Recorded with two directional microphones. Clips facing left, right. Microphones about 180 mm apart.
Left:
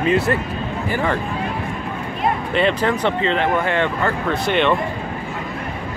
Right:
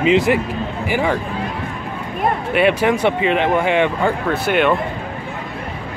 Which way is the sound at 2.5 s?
10° right (ahead or behind).